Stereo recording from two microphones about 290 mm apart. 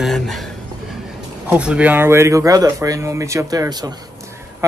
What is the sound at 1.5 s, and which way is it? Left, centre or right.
Speech, centre.